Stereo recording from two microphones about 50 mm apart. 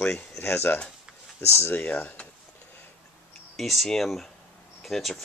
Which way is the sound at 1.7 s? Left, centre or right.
Left.